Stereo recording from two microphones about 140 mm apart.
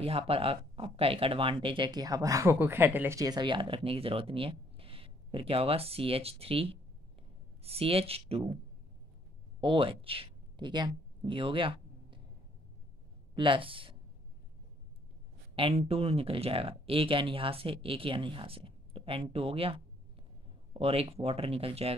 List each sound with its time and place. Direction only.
0.0 s speech: 45° right (ahead or behind)
9.6 s speech: 40° right (ahead or behind)
13.3 s speech: 35° right (ahead or behind)
15.5 s speech: 45° right (ahead or behind)